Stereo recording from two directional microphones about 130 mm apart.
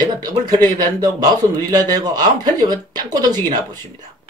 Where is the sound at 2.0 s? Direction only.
30° right (ahead or behind).